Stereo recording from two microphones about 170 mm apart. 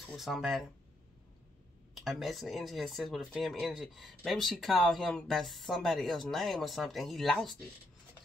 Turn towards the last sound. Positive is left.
turn(degrees=0)  # may be behind; listen again after turning